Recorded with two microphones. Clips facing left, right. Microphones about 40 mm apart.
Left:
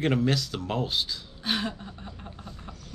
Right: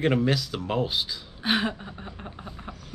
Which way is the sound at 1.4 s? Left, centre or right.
Right.